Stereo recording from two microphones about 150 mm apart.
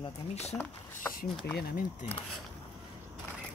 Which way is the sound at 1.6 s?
75° left (ahead or behind).